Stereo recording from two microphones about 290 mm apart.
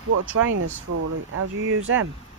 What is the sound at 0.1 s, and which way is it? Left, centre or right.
Speech, right.